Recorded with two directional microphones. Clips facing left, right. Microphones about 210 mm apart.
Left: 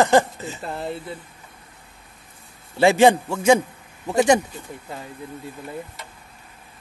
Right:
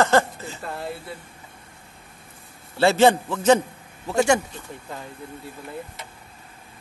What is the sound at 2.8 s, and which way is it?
Speech, 15° left (ahead or behind).